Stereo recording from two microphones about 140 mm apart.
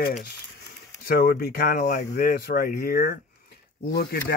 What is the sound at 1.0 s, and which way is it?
Speech, 90° left.